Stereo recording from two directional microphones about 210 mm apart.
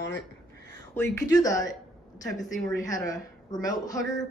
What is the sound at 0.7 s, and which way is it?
Speech, 10° left (ahead or behind).